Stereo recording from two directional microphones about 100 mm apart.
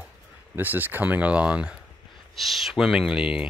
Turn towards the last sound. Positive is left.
turn(degrees=-10)  # may be behind; listen again after turning